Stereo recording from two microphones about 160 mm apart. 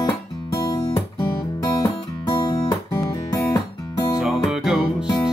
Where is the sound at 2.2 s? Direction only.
20° left (ahead or behind).